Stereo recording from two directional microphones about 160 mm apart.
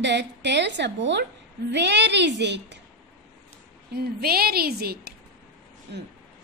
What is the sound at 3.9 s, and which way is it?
A woman's voice, 75° right (ahead or behind).